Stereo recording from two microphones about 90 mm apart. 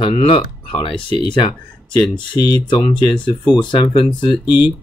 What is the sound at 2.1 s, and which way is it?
Speech, 55° left (ahead or behind).